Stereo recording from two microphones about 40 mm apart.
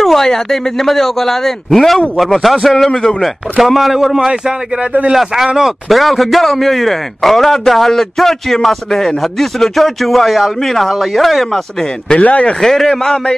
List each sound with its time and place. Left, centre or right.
0.0 s a sound: centre
0.3 s a man's voice: centre
2.9 s a man's voice: centre
3.6 s a man's voice: centre
12.2 s speech: left
12.6 s a man's voice: centre